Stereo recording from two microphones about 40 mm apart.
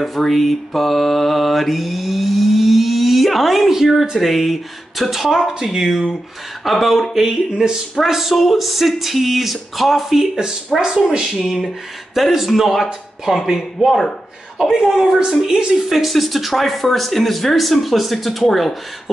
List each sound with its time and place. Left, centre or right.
0.0 s mantra: centre
4.2 s mantra: centre
5.6 s speech: centre
6.6 s mantra: centre
7.2 s speech: centre
8.1 s mantra: centre
11.1 s speech: centre
11.3 s mantra: centre
13.8 s speech: centre
15.9 s mantra: centre